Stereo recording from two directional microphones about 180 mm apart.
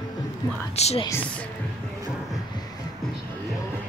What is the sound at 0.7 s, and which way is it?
Speech, 35° left (ahead or behind).